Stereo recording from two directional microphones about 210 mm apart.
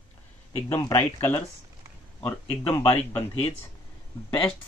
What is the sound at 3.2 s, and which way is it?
Speech, 30° left (ahead or behind).